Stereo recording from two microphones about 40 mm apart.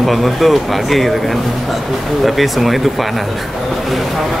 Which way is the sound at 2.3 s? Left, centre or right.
Centre.